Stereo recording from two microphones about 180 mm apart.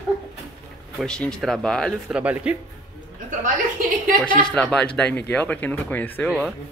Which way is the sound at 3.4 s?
50° right (ahead or behind).